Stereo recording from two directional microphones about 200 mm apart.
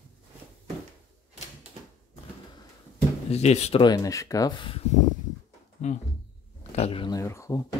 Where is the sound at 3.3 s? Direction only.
35° left (ahead or behind); by 7.6 s 15° left (ahead or behind).